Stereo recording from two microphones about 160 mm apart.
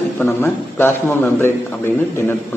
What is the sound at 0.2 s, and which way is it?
Speech, 15° left (ahead or behind).